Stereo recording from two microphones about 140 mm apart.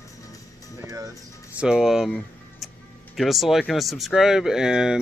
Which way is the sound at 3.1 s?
Centre (ahead or behind).